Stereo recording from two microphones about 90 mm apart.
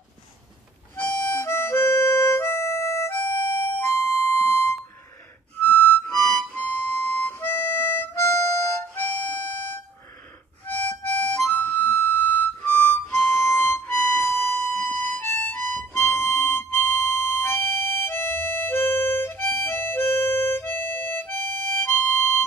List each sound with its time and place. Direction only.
0.9 s harmonica: 20° left (ahead or behind)
3.2 s music: 20° left (ahead or behind)
5.6 s music: 20° left (ahead or behind)
6.5 s harmonica: 20° left (ahead or behind)
13.1 s music: 20° left (ahead or behind)
18.0 s harmonica: 25° left (ahead or behind)